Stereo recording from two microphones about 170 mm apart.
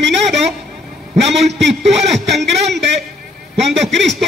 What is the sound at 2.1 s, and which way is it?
Speech, centre (ahead or behind).